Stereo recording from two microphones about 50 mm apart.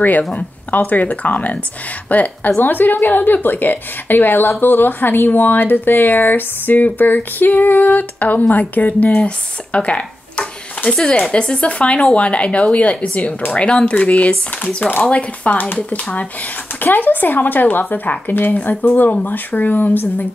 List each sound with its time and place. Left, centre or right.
0.3 s speech: left
16.8 s speech: left